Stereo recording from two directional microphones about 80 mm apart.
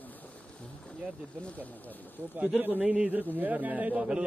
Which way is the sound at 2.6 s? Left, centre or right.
Right.